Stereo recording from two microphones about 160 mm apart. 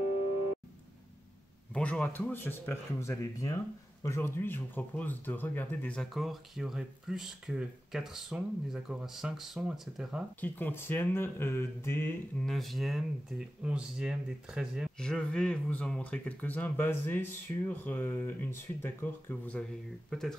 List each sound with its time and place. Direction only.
1.7 s speech: 10° left (ahead or behind)
10.4 s speech: 15° left (ahead or behind)
12.4 s speech: centre (ahead or behind)